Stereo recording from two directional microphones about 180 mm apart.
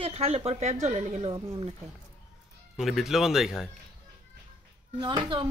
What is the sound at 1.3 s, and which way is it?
Speech, 25° right (ahead or behind).